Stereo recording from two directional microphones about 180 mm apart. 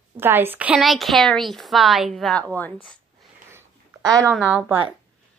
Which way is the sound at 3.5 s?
20° right (ahead or behind).